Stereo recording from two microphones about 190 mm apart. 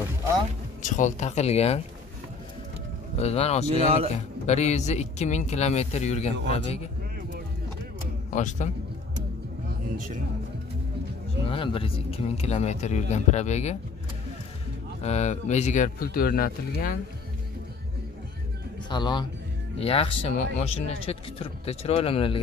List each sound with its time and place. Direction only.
0.8 s speech: 40° left (ahead or behind)
3.2 s speech: 35° left (ahead or behind)
3.7 s a man's voice: 30° right (ahead or behind)
4.5 s speech: 35° left (ahead or behind)
8.3 s a man's voice: 40° left (ahead or behind)
9.9 s speech: 45° right (ahead or behind)
11.4 s speech: 30° left (ahead or behind)
15.0 s speech: 35° left (ahead or behind); by 16.9 s 50° left (ahead or behind)
18.9 s speech: 25° left (ahead or behind)